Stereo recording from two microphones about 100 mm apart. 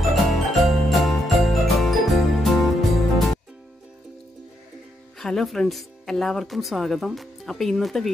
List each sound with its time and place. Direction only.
0.1 s jingle bell: centre (ahead or behind)
0.8 s jingle: centre (ahead or behind)
5.2 s speech: 5° left (ahead or behind)